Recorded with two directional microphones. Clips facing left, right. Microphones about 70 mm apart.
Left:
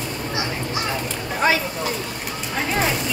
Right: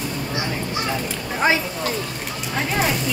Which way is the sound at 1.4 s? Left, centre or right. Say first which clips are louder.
Even; right.